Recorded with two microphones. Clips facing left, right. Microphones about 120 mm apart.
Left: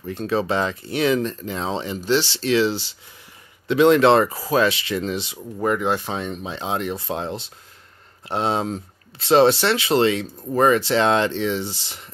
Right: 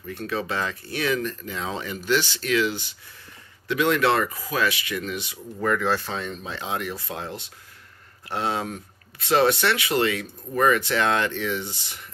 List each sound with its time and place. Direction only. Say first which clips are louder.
0.1 s speech: left 6 dB; 25° left (ahead or behind)